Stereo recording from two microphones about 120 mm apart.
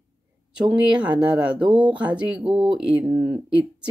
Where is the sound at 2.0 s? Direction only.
10° right (ahead or behind).